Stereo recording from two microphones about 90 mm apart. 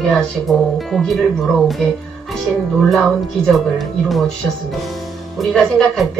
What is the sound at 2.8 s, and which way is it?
Speech, centre (ahead or behind).